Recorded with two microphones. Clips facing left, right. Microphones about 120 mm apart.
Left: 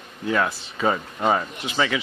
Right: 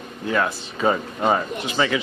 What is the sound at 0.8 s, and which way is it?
Speech, centre (ahead or behind).